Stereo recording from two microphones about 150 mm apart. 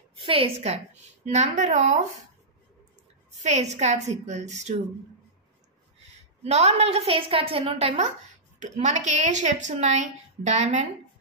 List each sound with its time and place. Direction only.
0.2 s a woman's voice: 35° right (ahead or behind)
3.3 s a woman's voice: 50° right (ahead or behind)
6.4 s a woman's voice: 45° right (ahead or behind)